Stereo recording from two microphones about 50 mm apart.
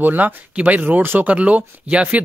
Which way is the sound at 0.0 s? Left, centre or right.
Right.